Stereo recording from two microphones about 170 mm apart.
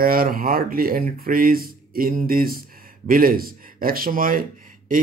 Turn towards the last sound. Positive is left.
turn(degrees=-55)  # may be behind; listen again after turning